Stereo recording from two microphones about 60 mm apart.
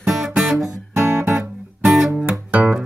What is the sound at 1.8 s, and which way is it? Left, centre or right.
Music, centre.